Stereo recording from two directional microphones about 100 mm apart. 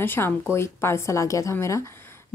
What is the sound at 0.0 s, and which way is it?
Speech, 20° left (ahead or behind).